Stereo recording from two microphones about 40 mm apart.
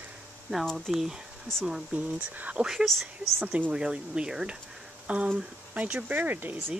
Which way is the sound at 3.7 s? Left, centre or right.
Right.